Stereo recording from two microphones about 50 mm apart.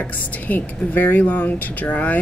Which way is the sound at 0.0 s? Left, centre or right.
Left.